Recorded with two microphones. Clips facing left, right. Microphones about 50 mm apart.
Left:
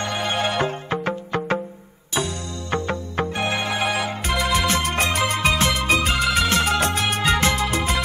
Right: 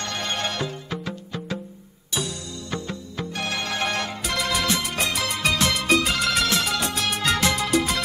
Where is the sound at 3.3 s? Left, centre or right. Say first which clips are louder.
Left 2 dB; left.